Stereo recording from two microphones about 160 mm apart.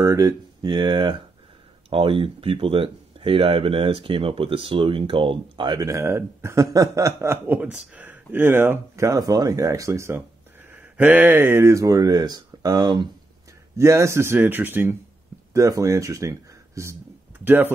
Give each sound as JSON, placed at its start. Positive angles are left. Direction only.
{"t": 0.0, "sound": "speech", "side_deg": -20}